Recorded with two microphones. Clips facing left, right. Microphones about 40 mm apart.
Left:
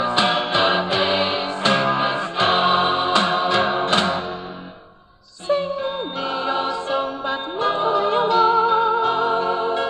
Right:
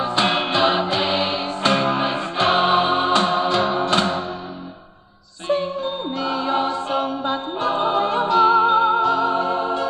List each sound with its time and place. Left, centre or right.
0.0 s music: left
6.1 s choir: left
6.7 s choir: right
8.0 s music: left
8.4 s music: right
9.0 s music: left